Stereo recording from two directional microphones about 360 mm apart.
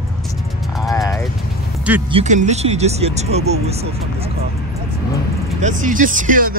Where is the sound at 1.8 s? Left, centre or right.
Centre.